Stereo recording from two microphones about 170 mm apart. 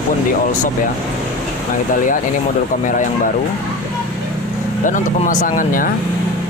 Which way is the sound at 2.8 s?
50° left (ahead or behind).